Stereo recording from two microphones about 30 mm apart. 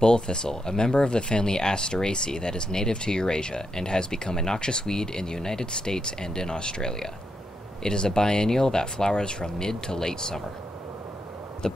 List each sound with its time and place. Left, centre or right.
0.0 s speech: left
11.6 s speech: left